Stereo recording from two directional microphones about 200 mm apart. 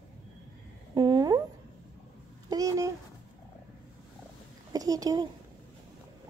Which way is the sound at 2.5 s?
15° right (ahead or behind).